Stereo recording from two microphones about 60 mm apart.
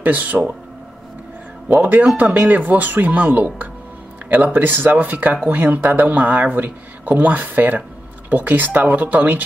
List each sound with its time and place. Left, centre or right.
0.0 s speech: right
1.7 s speech: right